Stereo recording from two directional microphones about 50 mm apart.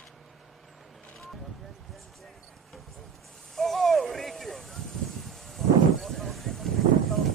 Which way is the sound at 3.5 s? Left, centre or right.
Centre.